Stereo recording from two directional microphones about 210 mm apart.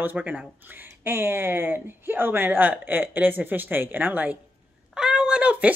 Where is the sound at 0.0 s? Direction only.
10° right (ahead or behind).